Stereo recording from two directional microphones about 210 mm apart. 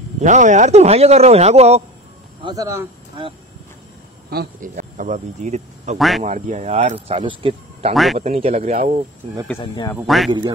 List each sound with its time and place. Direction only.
0.2 s speech: 35° right (ahead or behind)
2.4 s speech: 15° right (ahead or behind)
4.3 s speech: 45° right (ahead or behind)
5.9 s speech: centre (ahead or behind)
6.2 s speech: 35° right (ahead or behind)
7.9 s speech: centre (ahead or behind)
8.2 s speech: 30° right (ahead or behind)
9.6 s speech: 20° left (ahead or behind)
9.9 s speech: centre (ahead or behind)